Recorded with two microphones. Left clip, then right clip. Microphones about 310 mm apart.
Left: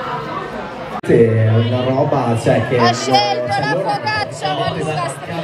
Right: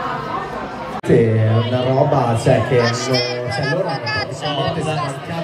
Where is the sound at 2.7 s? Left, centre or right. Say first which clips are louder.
Left 3 dB; centre.